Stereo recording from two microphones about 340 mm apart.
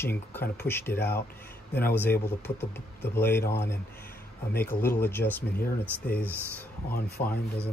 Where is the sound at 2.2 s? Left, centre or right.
Centre.